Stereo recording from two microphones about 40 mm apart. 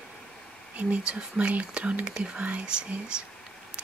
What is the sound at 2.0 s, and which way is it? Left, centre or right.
Speech, right.